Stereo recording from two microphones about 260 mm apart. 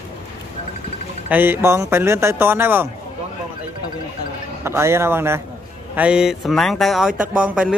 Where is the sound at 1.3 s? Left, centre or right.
Centre.